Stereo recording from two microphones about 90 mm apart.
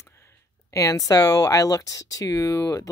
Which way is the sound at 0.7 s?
35° left (ahead or behind).